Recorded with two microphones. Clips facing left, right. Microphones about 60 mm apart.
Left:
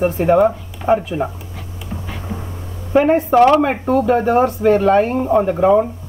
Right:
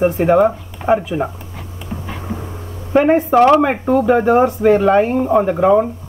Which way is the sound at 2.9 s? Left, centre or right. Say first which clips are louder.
Even; centre.